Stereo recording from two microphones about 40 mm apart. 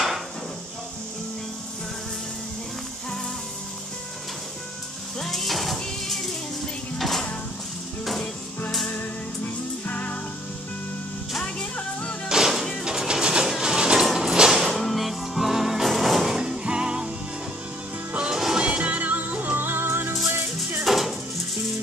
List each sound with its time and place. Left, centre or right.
5.2 s music: centre
7.0 s dishes: centre
9.8 s music: left
12.3 s music: centre
12.8 s a sound: centre
14.5 s music: centre
16.3 s music: right
18.2 s music: centre
18.8 s music: right
20.8 s dishes: centre